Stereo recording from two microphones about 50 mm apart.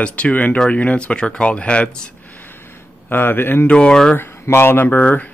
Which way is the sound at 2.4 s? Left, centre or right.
Left.